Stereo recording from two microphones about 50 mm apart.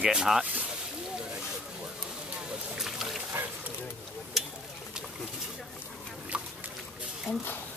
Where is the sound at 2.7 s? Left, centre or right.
Centre.